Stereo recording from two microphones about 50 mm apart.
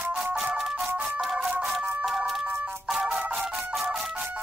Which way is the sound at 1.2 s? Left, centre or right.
Centre.